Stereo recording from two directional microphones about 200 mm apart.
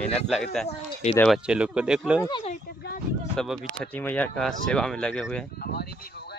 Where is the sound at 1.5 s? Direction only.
5° right (ahead or behind).